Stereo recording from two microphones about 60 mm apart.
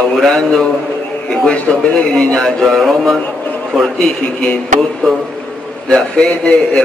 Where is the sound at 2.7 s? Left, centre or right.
Centre.